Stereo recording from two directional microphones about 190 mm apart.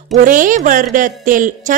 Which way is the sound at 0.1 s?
45° right (ahead or behind).